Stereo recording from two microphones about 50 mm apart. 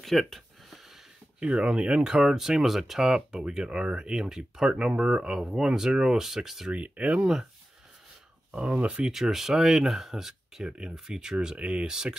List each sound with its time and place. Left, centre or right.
0.0 s a sound: centre
1.4 s speech: centre
6.7 s speech: right
8.5 s speech: right
9.0 s speech: centre